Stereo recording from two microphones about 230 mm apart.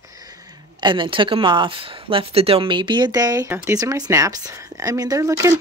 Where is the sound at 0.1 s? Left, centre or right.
Centre.